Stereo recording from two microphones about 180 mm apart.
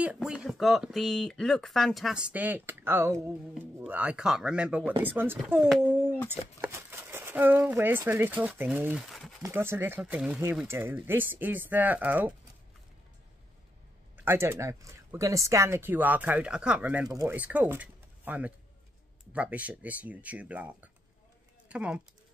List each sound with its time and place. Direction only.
0.0 s speech: 5° right (ahead or behind)
5.9 s a sound: 10° right (ahead or behind)
6.6 s speech: 15° right (ahead or behind)
9.4 s speech: 15° right (ahead or behind)
14.1 s speech: 15° right (ahead or behind)
17.1 s speech: 20° right (ahead or behind)
17.4 s speech: 10° right (ahead or behind)